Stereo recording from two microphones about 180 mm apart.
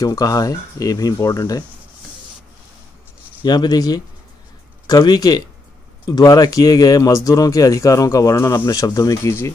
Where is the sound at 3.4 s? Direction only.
25° left (ahead or behind).